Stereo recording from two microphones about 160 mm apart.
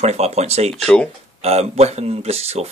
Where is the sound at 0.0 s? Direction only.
40° right (ahead or behind).